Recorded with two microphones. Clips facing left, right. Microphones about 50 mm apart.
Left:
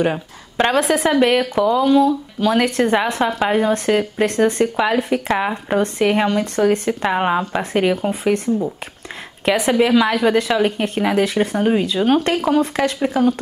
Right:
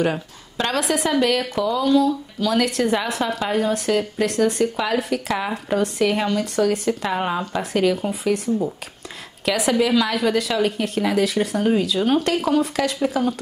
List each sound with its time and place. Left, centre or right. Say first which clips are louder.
0.6 s speech: left 5 dB; left
6.9 s speech: left 4 dB; left
9.6 s speech: left 3 dB; left